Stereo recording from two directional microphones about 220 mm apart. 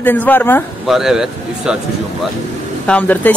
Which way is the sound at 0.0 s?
10° left (ahead or behind).